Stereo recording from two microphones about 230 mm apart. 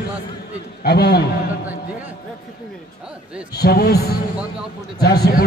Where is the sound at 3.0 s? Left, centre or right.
Centre.